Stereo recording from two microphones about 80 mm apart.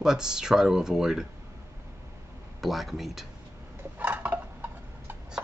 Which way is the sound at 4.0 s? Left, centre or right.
Right.